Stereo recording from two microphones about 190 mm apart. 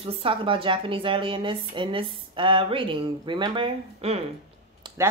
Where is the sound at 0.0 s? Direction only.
30° right (ahead or behind).